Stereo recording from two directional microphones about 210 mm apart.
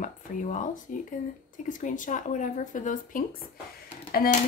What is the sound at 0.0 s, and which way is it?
Speech, 35° left (ahead or behind).